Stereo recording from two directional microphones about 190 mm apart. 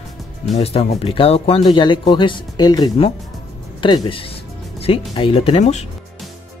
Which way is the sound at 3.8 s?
25° left (ahead or behind).